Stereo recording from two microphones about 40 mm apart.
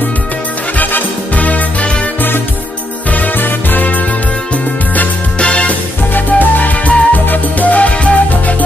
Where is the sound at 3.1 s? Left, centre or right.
Left.